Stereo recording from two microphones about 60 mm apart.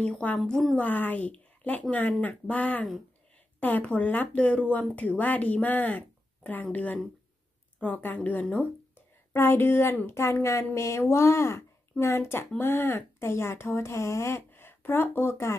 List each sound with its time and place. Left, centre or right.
0.0 s speech: left
0.5 s a woman's voice: centre
0.7 s speech: left
9.3 s speech: left